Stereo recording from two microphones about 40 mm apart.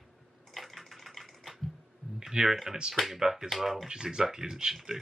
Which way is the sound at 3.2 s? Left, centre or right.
Centre.